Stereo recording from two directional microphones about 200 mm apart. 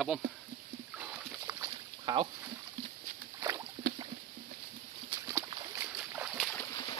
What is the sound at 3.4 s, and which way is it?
Rowboat, 15° right (ahead or behind).